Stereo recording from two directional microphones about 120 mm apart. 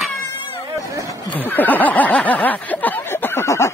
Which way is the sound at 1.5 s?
15° left (ahead or behind).